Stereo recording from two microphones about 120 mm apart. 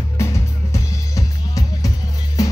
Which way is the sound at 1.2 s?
30° left (ahead or behind).